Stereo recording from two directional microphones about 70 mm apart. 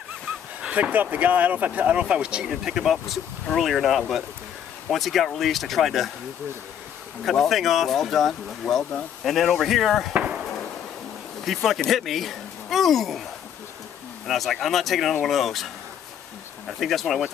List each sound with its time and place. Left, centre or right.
0.6 s speech: centre
7.2 s speech: centre
10.1 s chop: centre
11.4 s speech: centre
14.2 s speech: centre